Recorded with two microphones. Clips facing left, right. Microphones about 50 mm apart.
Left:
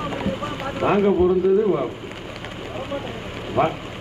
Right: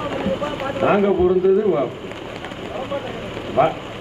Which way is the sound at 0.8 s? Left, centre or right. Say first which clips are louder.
Right 2 dB; right.